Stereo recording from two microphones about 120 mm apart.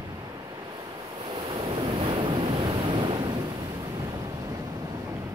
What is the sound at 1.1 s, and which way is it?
Waves, 45° right (ahead or behind).